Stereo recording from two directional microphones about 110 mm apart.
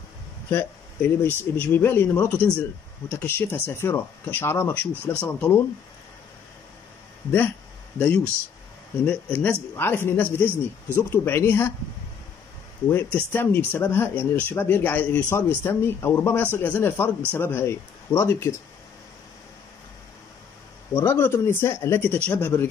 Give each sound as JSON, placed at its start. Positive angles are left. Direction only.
{"t": 0.5, "sound": "speech", "side_deg": 20}
{"t": 7.2, "sound": "speech", "side_deg": 20}
{"t": 9.0, "sound": "speech", "side_deg": 15}
{"t": 12.8, "sound": "speech", "side_deg": 20}
{"t": 20.9, "sound": "speech", "side_deg": 20}